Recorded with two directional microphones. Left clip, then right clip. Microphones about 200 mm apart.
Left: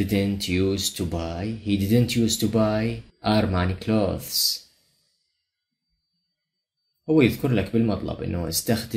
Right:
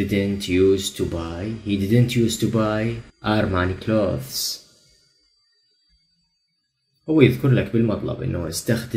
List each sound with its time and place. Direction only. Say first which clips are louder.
0.1 s speech: right 3 dB; 30° left (ahead or behind)
7.2 s speech: right 4 dB; 30° left (ahead or behind)